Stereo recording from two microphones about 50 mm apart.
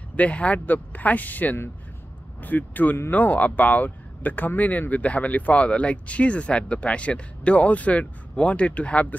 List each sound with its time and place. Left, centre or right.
0.1 s speech: left